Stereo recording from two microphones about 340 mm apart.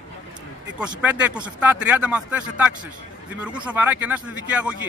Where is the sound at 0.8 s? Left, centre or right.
Centre.